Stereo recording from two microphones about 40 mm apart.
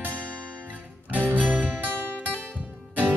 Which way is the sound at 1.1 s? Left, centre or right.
Right.